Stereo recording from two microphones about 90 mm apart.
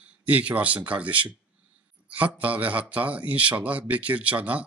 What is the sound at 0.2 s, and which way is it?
Speech, 15° right (ahead or behind).